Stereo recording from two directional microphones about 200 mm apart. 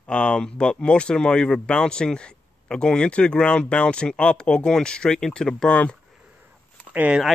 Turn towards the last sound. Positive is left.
turn(degrees=-5)  # may be behind; listen again after turning